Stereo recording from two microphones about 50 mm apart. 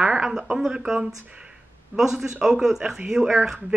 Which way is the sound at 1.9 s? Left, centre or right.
Centre.